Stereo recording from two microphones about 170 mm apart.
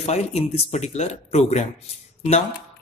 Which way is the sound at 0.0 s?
40° left (ahead or behind).